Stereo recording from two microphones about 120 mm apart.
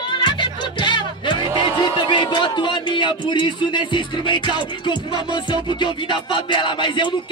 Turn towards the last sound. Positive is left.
turn(degrees=40)  # may be behind; listen again after turning